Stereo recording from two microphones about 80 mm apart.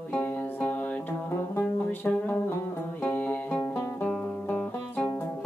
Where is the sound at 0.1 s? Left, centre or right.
Left.